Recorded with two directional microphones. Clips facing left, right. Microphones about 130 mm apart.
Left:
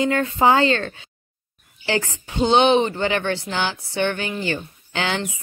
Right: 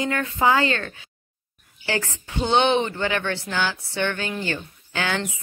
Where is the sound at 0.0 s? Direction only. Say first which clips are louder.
Left 4 dB; 25° left (ahead or behind).